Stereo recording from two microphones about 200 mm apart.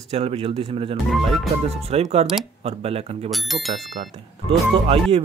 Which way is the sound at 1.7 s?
30° right (ahead or behind).